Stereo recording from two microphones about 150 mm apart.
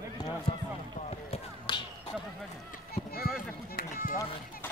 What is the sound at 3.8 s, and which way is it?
Speech, 75° left (ahead or behind).